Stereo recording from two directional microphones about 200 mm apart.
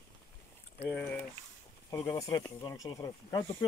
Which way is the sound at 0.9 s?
5° left (ahead or behind).